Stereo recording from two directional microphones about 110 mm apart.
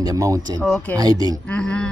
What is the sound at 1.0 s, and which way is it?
Speech, 35° right (ahead or behind).